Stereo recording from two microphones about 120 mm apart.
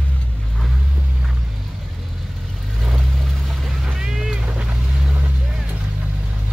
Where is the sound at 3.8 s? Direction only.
5° right (ahead or behind).